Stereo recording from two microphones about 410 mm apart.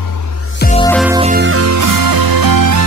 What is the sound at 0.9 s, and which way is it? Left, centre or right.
Music, centre.